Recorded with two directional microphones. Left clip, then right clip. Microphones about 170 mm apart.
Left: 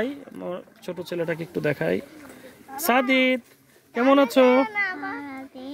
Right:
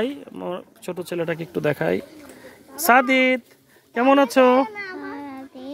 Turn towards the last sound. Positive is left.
turn(degrees=-20)  # may be behind; listen again after turning